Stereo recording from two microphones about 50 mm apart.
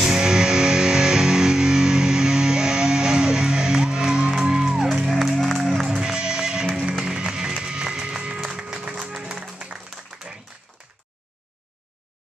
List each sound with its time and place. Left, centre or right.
0.0 s music: centre
10.3 s applause: centre